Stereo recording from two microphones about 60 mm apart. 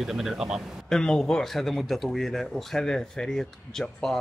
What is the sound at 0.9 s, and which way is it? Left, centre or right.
Speech, centre.